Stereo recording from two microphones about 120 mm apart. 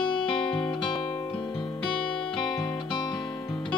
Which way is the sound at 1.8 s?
40° left (ahead or behind).